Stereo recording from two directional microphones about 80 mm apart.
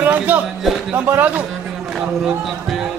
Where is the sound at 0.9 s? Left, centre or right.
Right.